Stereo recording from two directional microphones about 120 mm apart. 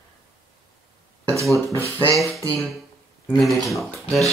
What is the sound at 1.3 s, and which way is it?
Speech, 25° right (ahead or behind).